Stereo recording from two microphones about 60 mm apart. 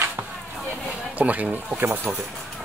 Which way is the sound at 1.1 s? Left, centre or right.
Right.